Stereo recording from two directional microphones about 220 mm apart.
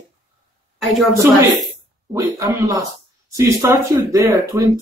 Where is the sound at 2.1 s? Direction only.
15° right (ahead or behind).